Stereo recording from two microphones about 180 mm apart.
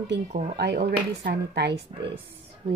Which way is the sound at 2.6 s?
40° right (ahead or behind).